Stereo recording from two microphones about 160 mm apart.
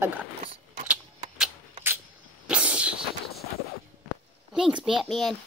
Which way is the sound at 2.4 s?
5° right (ahead or behind).